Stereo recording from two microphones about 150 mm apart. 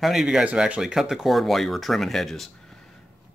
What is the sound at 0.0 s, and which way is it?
Speech, centre (ahead or behind).